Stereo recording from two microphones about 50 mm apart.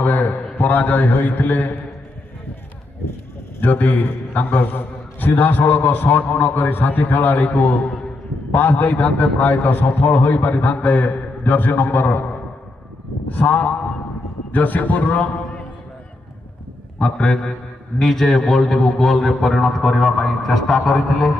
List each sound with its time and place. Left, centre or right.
0.0 s a sound: left
0.6 s a man's voice: left
3.6 s a man's voice: left
13.3 s a man's voice: left
17.0 s a man's voice: left
17.9 s a man's voice: centre
20.7 s a man's voice: left